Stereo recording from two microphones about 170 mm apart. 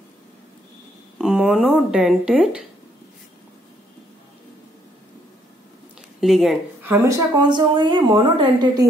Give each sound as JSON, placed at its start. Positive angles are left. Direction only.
{"t": 1.1, "sound": "speech", "side_deg": -5}
{"t": 6.2, "sound": "speech", "side_deg": 0}
{"t": 6.8, "sound": "a woman's voice", "side_deg": -20}